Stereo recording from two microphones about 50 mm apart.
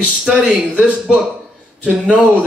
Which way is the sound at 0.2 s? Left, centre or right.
Centre.